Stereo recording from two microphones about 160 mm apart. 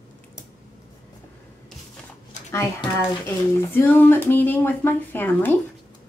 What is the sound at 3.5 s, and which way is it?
Speech, 15° left (ahead or behind).